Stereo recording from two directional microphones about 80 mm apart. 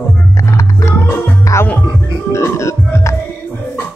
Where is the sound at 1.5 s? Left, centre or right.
Left.